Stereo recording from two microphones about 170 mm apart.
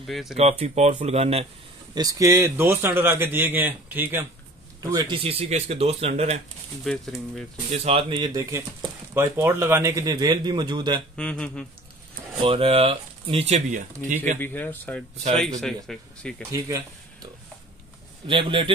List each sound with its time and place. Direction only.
0.0 s speech: centre (ahead or behind)
0.4 s speech: 40° right (ahead or behind)
2.0 s a man's voice: 20° right (ahead or behind)
4.8 s speech: 25° right (ahead or behind)
6.8 s speech: centre (ahead or behind)
7.7 s a man's voice: 35° right (ahead or behind)
11.1 s speech: 5° left (ahead or behind)
12.4 s speech: 30° right (ahead or behind)
14.4 s speech: 10° left (ahead or behind)
16.5 s speech: 20° right (ahead or behind)
18.2 s a man's voice: 30° right (ahead or behind)